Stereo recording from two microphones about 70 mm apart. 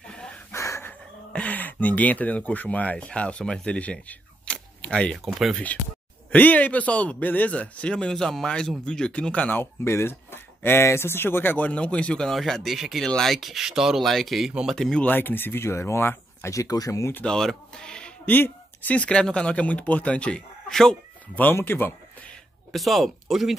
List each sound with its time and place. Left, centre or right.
0.0 s a sound: centre
0.5 s a sound: left
1.3 s speech: left
5.1 s speech: centre
6.3 s a man's voice: left
9.8 s speech: left; by 15.0 s centre
15.0 s speech: left
16.5 s speech: left
17.2 s speech: centre
18.3 s speech: left; by 20.9 s centre
21.5 s speech: left
22.7 s speech: centre